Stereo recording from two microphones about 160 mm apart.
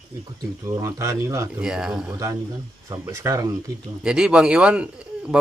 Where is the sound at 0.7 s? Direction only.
20° right (ahead or behind).